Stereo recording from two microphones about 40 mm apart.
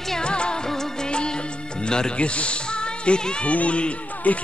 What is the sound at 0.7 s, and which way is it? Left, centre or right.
Music of bollywood, centre.